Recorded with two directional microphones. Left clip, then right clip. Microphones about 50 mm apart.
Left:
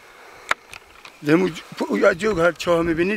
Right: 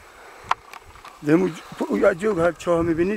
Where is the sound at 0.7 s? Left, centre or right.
Left.